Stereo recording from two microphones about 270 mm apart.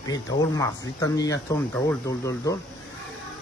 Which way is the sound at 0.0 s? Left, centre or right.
Centre.